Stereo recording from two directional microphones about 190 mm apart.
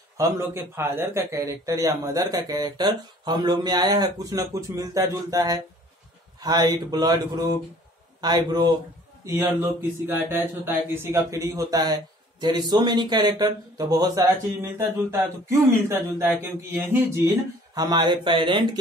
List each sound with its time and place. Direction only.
0.7 s a man's voice: 10° right (ahead or behind)